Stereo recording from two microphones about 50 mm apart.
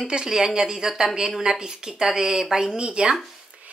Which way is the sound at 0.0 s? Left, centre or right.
Centre.